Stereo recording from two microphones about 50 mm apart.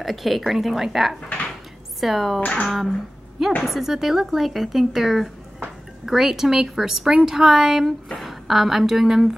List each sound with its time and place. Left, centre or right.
0.0 s speech: centre
2.4 s speech: left
3.6 s a woman's voice: centre